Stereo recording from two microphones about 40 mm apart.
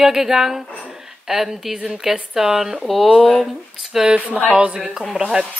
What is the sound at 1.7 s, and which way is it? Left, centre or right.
Speech, right.